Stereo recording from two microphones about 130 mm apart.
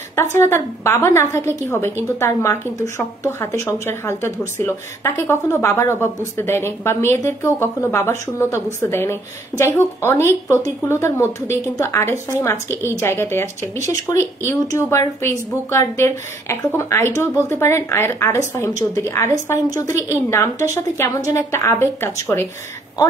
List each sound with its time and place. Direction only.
0.1 s a woman's voice: 20° left (ahead or behind)